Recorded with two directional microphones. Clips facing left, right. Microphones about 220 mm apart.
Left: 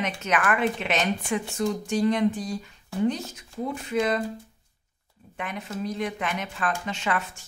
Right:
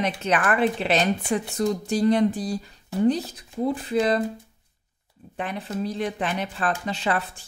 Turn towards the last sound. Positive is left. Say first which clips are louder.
# right 3 dB
turn(degrees=-35)  # may be behind; listen again after turning